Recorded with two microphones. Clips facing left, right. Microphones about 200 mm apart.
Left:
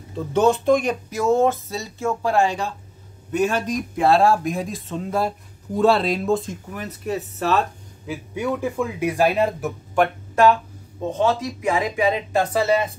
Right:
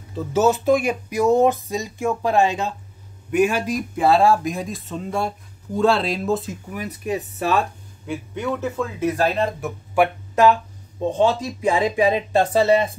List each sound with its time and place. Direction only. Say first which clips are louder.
0.1 s a man's voice: even; 5° right (ahead or behind)
8.1 s speech: even; 10° left (ahead or behind)
10.0 s speech: right 1 dB; 10° right (ahead or behind)
11.1 s speech: right 2 dB; 30° right (ahead or behind)